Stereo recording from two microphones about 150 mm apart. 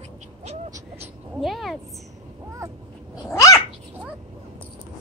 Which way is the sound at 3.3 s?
20° left (ahead or behind).